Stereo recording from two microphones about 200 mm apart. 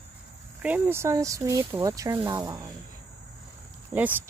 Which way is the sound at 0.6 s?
10° right (ahead or behind).